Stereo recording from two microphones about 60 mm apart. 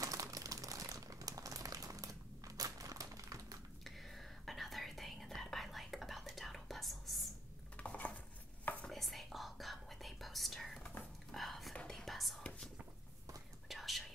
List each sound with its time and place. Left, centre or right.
0.0 s crumpling: right
3.8 s whispering: centre
7.7 s dishes: left
8.9 s whispering: centre
13.7 s whispering: centre